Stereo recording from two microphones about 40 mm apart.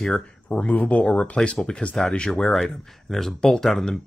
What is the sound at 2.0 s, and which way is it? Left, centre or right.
Speech, left.